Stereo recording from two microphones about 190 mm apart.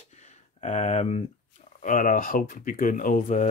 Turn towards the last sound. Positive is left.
turn(degrees=40)  # may be behind; listen again after turning